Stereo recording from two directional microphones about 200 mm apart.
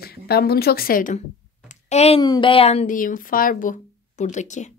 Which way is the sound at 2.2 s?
20° left (ahead or behind).